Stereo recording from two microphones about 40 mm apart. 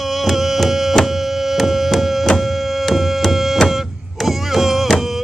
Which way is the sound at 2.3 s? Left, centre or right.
Centre.